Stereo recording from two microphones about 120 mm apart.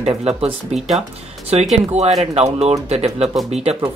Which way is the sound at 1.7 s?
60° right (ahead or behind).